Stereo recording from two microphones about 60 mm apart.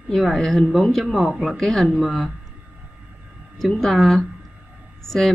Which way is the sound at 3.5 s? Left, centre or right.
Centre.